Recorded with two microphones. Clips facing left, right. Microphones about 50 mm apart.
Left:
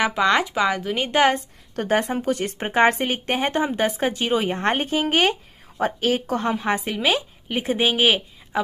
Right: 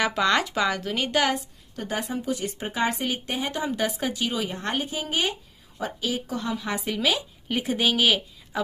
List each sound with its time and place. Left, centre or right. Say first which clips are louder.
0.0 s speech: left 3 dB; centre
1.8 s a woman's voice: left 8 dB; left